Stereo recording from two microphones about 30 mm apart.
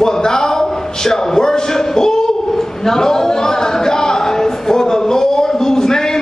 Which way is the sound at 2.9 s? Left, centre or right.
Centre.